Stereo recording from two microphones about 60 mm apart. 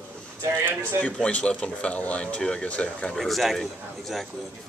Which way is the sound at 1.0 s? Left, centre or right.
Left.